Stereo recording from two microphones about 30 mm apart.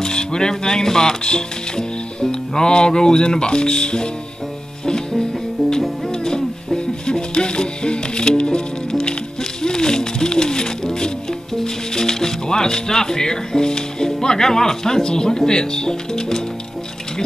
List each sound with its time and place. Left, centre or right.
0.0 s speech: left
4.8 s music: left
11.6 s speech: centre